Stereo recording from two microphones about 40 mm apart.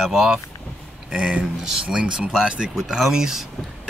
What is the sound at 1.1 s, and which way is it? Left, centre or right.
Speech, right.